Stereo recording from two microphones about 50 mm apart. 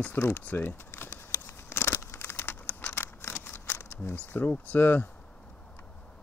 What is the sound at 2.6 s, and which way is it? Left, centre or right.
Crumpling, left.